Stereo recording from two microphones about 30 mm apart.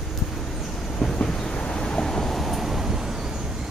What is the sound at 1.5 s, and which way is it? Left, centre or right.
Thunder, left.